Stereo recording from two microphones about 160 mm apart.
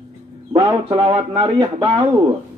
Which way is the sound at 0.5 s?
30° right (ahead or behind).